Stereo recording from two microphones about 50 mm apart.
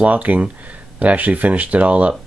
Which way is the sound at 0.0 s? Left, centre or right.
Right.